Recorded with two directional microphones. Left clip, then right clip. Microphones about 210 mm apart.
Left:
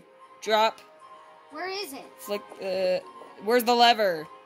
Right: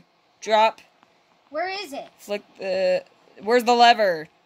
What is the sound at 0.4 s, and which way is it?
Speech, centre (ahead or behind).